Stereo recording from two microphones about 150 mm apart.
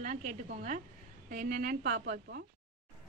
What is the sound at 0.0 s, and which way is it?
A woman's voice, 55° right (ahead or behind).